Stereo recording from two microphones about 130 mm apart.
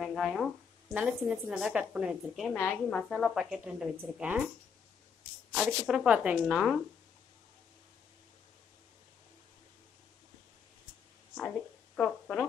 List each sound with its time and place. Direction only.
0.0 s a woman's voice: centre (ahead or behind)
2.5 s a woman's voice: 10° left (ahead or behind)
3.1 s a woman's voice: centre (ahead or behind)
5.5 s speech: 5° right (ahead or behind)
6.4 s a woman's voice: 5° left (ahead or behind)
11.3 s a sound: 5° left (ahead or behind)